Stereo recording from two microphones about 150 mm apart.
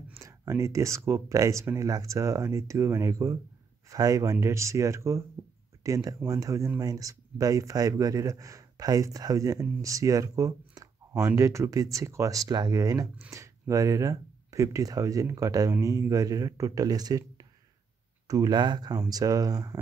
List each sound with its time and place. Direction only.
0.2 s speech: 20° right (ahead or behind)